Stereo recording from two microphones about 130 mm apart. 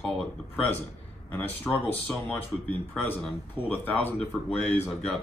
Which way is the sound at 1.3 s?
15° left (ahead or behind).